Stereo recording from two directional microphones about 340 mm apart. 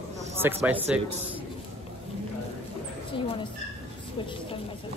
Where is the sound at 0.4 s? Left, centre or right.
Centre.